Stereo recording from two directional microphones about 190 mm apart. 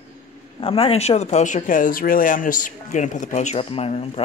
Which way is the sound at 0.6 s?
30° left (ahead or behind).